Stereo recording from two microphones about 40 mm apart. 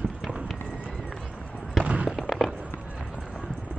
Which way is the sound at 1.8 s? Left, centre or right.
Right.